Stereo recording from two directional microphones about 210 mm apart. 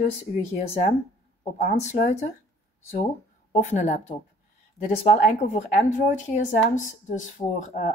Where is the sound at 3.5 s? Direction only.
35° left (ahead or behind).